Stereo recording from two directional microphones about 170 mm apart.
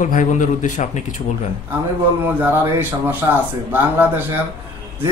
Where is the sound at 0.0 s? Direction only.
50° left (ahead or behind).